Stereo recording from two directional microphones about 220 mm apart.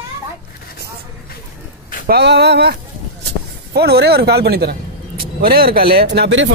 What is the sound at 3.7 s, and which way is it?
Speech, 45° right (ahead or behind).